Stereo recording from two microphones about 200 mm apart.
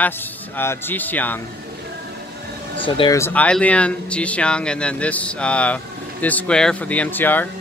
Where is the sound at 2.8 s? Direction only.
25° left (ahead or behind).